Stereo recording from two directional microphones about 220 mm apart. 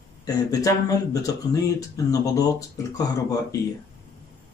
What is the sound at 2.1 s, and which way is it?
Speech, 15° left (ahead or behind).